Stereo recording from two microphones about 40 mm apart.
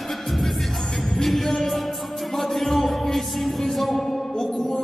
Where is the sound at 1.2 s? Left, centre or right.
Centre.